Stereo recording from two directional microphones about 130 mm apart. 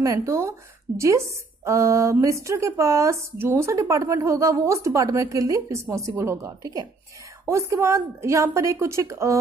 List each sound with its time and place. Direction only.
0.0 s a woman's voice: 25° right (ahead or behind)